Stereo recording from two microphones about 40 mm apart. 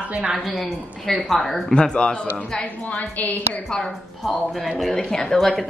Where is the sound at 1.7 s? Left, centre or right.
Left.